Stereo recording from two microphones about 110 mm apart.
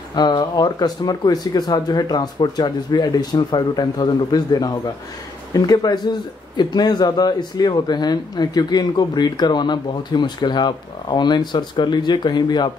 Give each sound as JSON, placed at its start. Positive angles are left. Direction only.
{"t": 0.1, "sound": "a man's voice", "side_deg": 40}